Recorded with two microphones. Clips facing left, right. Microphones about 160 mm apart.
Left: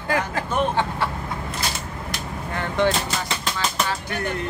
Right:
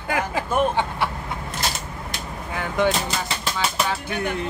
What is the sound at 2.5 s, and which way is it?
Speech, 10° right (ahead or behind).